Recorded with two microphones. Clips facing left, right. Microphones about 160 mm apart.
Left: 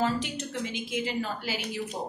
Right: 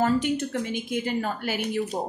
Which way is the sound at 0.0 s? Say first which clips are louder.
Right 6 dB; 50° right (ahead or behind).